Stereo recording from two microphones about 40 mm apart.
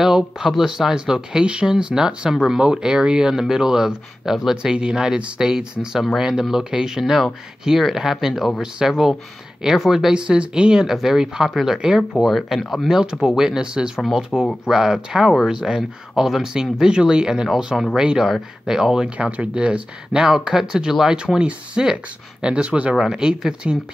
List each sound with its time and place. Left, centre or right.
0.0 s speech: centre
4.7 s speech: right
10.1 s speech: right
12.3 s speech: centre
12.8 s speech: centre
14.3 s speech: left
14.7 s speech: centre
19.0 s speech: right
20.2 s speech: centre
21.4 s speech: right
22.9 s speech: centre
23.2 s speech: right